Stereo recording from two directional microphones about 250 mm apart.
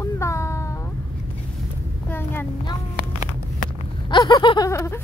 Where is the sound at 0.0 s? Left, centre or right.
Centre.